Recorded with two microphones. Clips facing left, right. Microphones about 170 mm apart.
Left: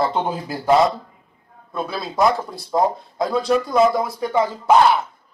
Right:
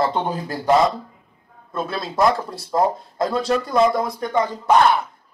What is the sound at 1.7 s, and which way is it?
Speech, centre (ahead or behind).